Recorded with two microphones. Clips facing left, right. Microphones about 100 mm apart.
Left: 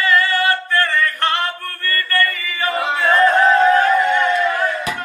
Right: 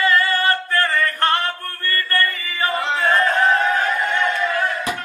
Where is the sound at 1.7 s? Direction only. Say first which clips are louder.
Left 2 dB; 25° right (ahead or behind).